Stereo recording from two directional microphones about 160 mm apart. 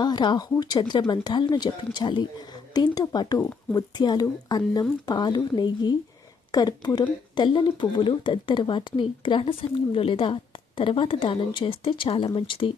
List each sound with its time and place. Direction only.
0.0 s speech: 25° left (ahead or behind)